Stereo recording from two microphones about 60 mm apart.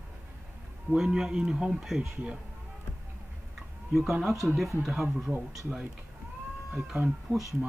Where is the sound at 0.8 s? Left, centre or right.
Centre.